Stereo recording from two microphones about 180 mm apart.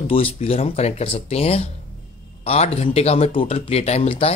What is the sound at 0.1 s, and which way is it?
A man's voice, 30° left (ahead or behind).